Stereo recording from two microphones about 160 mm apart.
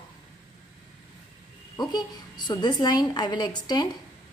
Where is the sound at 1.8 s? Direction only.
25° left (ahead or behind).